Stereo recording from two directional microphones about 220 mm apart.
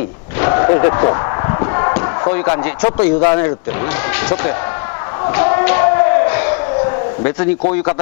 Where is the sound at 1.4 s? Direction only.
20° left (ahead or behind).